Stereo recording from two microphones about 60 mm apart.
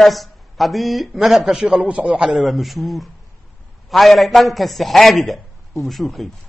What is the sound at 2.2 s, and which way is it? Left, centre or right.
Speech, centre.